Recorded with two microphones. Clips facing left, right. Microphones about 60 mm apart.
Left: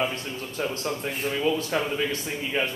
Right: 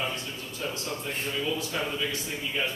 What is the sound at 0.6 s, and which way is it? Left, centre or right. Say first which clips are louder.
Speech: left 5 dB; left.